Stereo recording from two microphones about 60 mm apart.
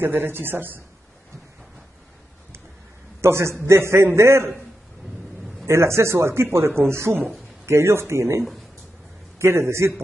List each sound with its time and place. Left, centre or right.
0.0 s a man's voice: right
3.2 s a man's voice: right
5.7 s speech: right